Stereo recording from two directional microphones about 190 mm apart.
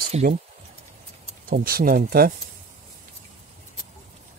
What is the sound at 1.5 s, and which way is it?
Speech, 50° right (ahead or behind).